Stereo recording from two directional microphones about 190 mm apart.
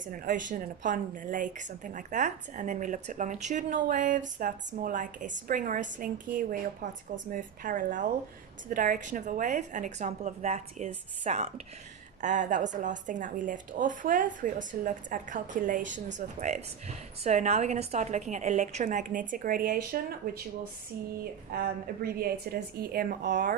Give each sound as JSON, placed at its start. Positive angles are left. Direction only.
{"t": 0.0, "sound": "a woman's voice", "side_deg": -45}